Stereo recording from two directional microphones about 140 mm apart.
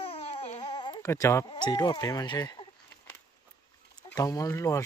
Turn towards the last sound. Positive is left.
turn(degrees=20)  # may be behind; listen again after turning